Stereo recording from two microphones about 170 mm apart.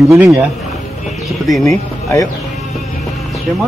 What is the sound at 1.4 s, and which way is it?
Speech, centre (ahead or behind).